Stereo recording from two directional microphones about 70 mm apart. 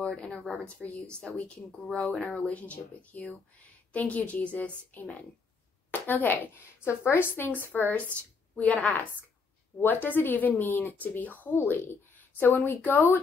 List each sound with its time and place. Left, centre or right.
0.0 s speech: centre
1.2 s speech: centre